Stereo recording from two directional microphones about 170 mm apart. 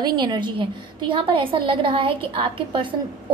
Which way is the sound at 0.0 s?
25° right (ahead or behind).